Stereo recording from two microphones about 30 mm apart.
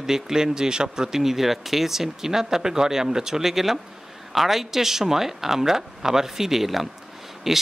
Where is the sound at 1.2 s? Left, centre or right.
Centre.